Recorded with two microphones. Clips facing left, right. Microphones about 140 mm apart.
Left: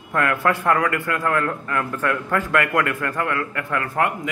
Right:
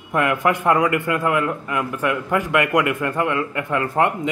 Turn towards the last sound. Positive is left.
turn(degrees=-20)  # may be behind; listen again after turning